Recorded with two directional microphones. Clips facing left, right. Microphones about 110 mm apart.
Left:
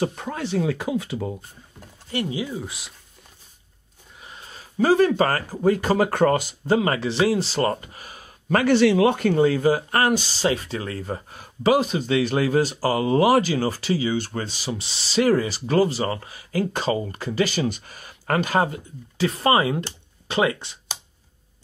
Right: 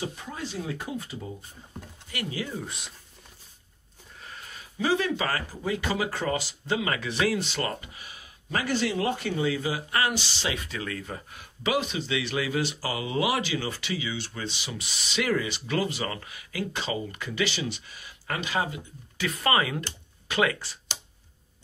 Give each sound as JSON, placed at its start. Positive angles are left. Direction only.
{"t": 0.0, "sound": "speech", "side_deg": 65}
{"t": 2.0, "sound": "speech", "side_deg": 25}
{"t": 2.5, "sound": "speech", "side_deg": 5}
{"t": 4.2, "sound": "a sound", "side_deg": 20}
{"t": 4.7, "sound": "speech", "side_deg": 45}
{"t": 9.2, "sound": "speech", "side_deg": 50}
{"t": 19.1, "sound": "speech", "side_deg": 30}